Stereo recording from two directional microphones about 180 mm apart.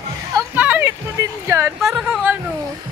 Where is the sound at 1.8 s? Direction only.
Centre (ahead or behind).